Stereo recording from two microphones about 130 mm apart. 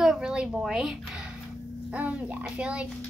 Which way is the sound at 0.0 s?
5° right (ahead or behind).